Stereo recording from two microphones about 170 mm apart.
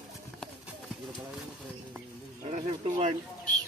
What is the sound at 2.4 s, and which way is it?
Speech, 35° right (ahead or behind).